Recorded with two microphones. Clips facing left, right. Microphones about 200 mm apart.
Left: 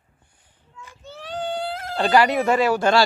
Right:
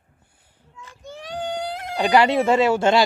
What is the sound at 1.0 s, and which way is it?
Speech, 15° right (ahead or behind).